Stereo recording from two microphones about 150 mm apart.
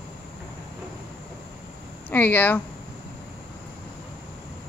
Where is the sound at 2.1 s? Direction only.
10° left (ahead or behind).